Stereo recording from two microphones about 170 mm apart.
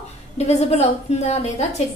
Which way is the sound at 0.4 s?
40° left (ahead or behind).